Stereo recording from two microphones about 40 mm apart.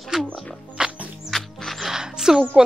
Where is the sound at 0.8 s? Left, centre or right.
Centre.